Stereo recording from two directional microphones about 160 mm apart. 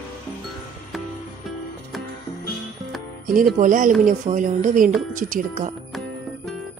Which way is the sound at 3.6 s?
55° right (ahead or behind).